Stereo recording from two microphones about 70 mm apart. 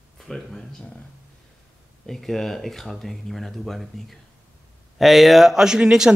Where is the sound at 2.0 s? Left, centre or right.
Centre.